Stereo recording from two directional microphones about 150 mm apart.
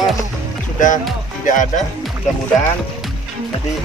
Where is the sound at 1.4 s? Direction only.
60° left (ahead or behind).